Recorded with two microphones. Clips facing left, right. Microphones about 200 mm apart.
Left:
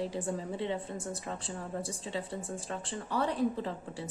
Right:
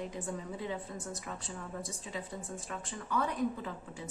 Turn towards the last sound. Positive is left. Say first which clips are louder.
# left 3 dB
turn(degrees=30)  # may be behind; listen again after turning